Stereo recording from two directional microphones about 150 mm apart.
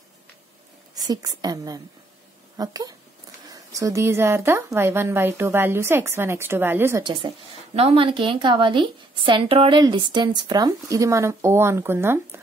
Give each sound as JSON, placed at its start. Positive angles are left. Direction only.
{"t": 0.9, "sound": "a woman's voice", "side_deg": -25}
{"t": 7.0, "sound": "a woman's voice", "side_deg": -35}